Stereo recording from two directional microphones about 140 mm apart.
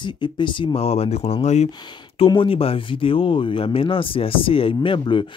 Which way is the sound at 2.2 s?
40° left (ahead or behind).